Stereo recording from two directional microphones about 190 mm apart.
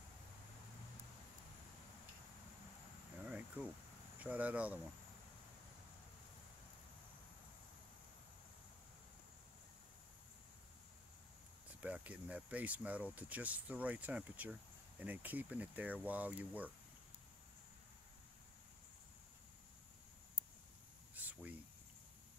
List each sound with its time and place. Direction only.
3.3 s cricket: 5° right (ahead or behind)
4.2 s speech: 10° right (ahead or behind)
11.8 s speech: 5° right (ahead or behind)
21.1 s cricket: 10° right (ahead or behind)